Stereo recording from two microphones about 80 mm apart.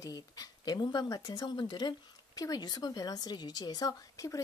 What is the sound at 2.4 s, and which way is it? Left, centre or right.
Speech, left.